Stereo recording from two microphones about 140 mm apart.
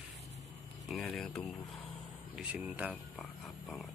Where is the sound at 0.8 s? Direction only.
Centre (ahead or behind).